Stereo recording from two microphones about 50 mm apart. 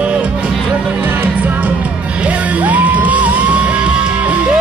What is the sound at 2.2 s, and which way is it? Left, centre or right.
Music, right.